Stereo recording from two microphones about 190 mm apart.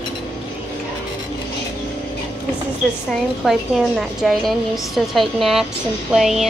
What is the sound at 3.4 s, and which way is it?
A woman's voice, centre (ahead or behind).